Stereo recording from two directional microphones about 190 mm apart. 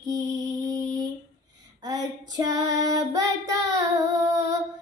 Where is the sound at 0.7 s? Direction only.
15° right (ahead or behind).